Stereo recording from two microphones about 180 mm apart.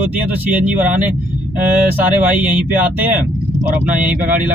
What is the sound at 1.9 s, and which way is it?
Speech, 10° right (ahead or behind).